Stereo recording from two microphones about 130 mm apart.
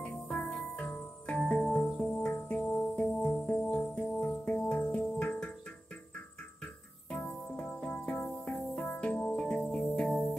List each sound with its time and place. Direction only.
0.0 s music: 10° left (ahead or behind)
7.1 s music: 10° left (ahead or behind)